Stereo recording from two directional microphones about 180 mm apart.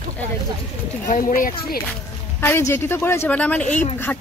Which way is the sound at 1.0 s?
50° left (ahead or behind).